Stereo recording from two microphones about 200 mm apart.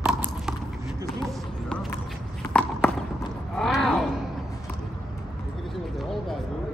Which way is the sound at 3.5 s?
5° left (ahead or behind).